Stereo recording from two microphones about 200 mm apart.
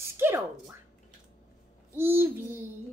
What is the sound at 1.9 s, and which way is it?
Speech, 10° right (ahead or behind).